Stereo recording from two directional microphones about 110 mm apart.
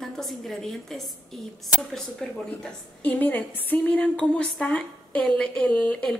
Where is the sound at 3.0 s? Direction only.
15° left (ahead or behind).